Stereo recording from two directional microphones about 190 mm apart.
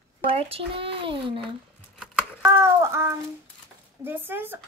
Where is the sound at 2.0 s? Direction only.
5° right (ahead or behind).